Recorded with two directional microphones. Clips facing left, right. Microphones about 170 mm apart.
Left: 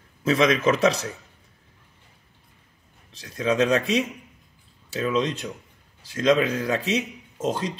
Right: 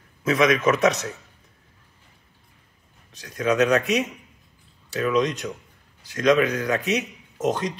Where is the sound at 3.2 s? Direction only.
30° left (ahead or behind).